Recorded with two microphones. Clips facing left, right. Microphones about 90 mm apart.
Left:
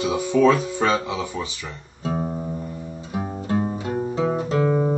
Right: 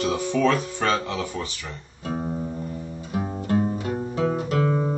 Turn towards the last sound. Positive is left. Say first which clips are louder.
# left 3 dB
turn(degrees=15)  # may be behind; listen again after turning